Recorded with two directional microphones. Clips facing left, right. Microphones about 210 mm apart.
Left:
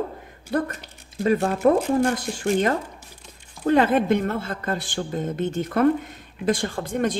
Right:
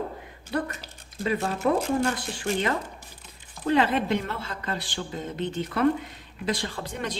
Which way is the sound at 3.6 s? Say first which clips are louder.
Left 5 dB; 45° left (ahead or behind).